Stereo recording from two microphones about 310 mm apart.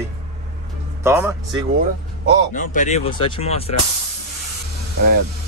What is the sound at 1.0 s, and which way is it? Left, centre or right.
Speech, centre.